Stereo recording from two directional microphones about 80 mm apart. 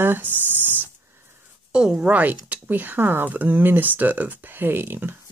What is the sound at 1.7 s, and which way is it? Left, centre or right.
Speech, centre.